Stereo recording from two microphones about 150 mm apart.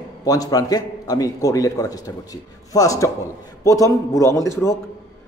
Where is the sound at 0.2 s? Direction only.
25° left (ahead or behind).